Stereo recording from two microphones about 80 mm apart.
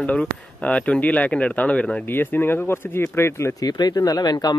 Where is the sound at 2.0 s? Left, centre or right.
Left.